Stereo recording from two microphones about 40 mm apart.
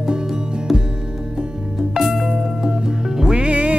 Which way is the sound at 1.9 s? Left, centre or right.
Centre.